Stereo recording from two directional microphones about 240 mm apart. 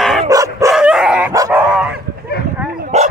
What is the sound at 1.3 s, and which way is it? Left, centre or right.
Dog, centre.